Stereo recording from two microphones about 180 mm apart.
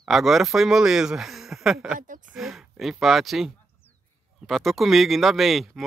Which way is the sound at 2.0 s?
45° right (ahead or behind).